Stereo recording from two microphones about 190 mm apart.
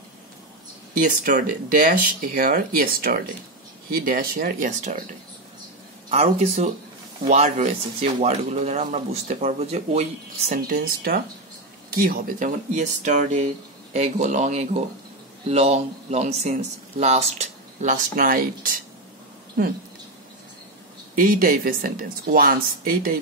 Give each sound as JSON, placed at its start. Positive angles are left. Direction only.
{"t": 0.9, "sound": "speech", "side_deg": -45}
{"t": 10.5, "sound": "speech", "side_deg": -45}
{"t": 21.2, "sound": "speech", "side_deg": -45}